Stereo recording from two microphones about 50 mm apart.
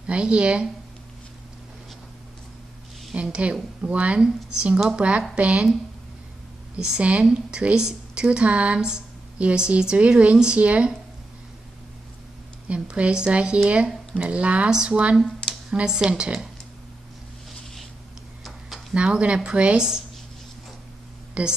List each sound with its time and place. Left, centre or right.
0.0 s speech: right
3.2 s speech: right
6.8 s speech: right
12.6 s speech: right
14.7 s speech: centre
18.4 s tick-tock: centre
18.9 s speech: right
21.4 s speech: right